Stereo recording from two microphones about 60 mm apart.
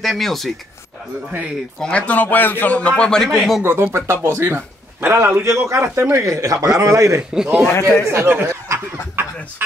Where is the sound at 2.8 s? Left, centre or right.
Centre.